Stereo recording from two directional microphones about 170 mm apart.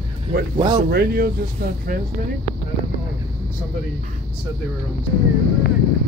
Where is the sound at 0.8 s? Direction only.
65° right (ahead or behind).